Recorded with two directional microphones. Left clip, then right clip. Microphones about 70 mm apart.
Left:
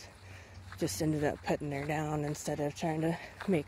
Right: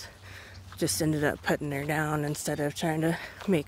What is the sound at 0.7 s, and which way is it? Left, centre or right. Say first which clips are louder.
Speech: right 5 dB; right.